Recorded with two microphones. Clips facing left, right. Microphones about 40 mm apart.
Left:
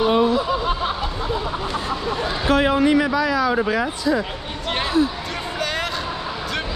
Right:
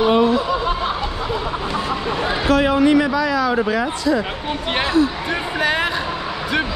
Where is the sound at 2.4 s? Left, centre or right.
Right.